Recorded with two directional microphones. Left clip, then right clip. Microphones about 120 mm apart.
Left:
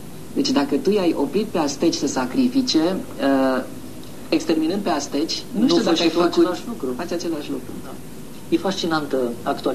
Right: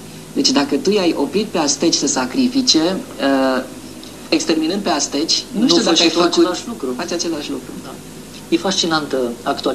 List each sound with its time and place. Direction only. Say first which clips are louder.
0.4 s speech: right 4 dB; 35° right (ahead or behind)